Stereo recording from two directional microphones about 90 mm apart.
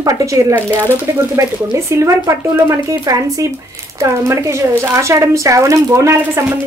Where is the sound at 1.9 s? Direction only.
35° right (ahead or behind).